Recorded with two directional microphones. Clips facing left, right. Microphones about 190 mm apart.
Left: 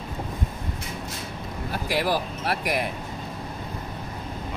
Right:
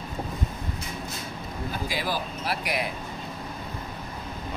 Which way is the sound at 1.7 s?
70° left (ahead or behind).